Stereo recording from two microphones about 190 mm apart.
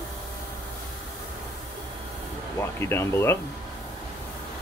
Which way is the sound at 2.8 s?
15° left (ahead or behind).